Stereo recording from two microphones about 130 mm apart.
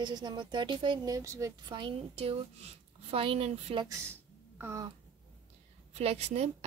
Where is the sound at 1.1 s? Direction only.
25° right (ahead or behind).